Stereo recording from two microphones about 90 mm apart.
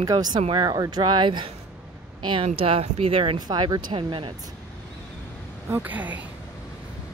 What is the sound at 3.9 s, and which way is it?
Speech, 70° right (ahead or behind).